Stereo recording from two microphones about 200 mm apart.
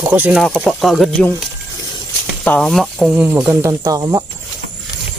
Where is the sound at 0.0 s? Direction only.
10° right (ahead or behind).